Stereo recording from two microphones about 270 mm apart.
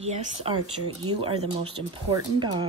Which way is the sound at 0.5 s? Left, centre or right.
Centre.